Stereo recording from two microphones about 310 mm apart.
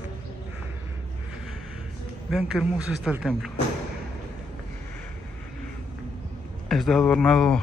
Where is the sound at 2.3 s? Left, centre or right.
Centre.